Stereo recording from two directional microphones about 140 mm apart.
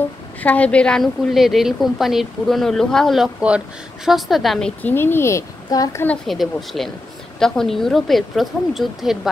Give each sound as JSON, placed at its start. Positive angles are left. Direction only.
{"t": 0.4, "sound": "a woman's voice", "side_deg": 10}
{"t": 4.9, "sound": "speech", "side_deg": 15}
{"t": 6.0, "sound": "a woman's voice", "side_deg": 0}